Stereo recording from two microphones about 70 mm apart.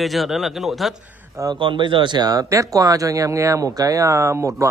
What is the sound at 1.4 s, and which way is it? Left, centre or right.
Speech, right.